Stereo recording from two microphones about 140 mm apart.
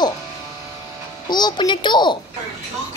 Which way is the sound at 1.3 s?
30° left (ahead or behind).